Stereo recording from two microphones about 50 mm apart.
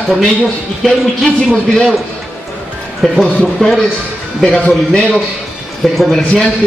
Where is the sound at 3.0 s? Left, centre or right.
Centre.